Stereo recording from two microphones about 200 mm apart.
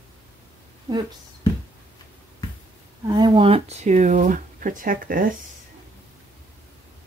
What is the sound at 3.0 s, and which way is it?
Speech, 20° right (ahead or behind).